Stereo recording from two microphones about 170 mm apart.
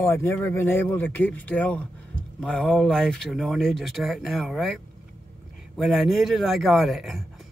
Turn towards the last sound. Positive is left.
turn(degrees=0)  # may be behind; listen again after turning